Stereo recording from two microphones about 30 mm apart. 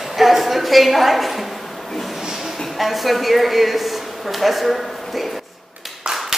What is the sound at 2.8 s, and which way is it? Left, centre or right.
A woman's voice, centre.